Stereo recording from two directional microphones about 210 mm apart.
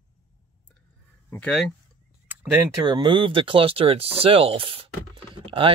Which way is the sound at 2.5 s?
10° right (ahead or behind).